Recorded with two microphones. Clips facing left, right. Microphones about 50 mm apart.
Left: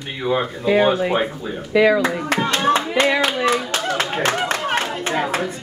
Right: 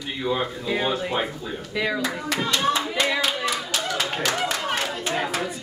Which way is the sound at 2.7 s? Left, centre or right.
Left.